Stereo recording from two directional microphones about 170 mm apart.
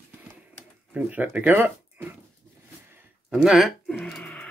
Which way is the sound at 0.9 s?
10° right (ahead or behind).